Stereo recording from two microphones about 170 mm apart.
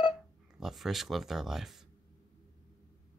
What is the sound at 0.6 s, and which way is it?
Speech, centre (ahead or behind).